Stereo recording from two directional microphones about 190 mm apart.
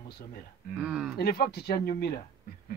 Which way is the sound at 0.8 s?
5° right (ahead or behind).